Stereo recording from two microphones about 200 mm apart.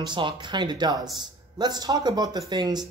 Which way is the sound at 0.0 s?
25° right (ahead or behind).